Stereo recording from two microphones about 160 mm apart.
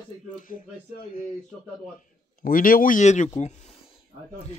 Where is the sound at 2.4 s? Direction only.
60° left (ahead or behind).